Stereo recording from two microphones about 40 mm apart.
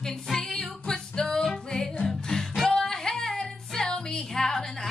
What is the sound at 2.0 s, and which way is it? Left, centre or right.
Music, centre.